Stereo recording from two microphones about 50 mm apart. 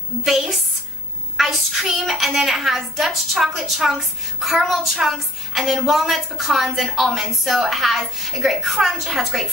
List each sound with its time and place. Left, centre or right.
0.2 s a woman's voice: centre